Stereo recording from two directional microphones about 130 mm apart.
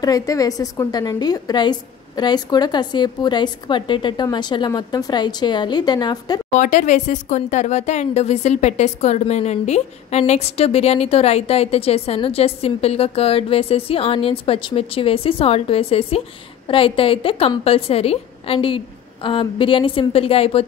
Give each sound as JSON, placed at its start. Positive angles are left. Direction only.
{"t": 0.0, "sound": "a woman's voice", "side_deg": 25}
{"t": 6.5, "sound": "speech", "side_deg": 75}